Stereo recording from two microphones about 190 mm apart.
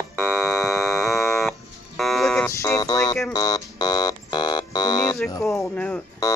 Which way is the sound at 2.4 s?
15° left (ahead or behind).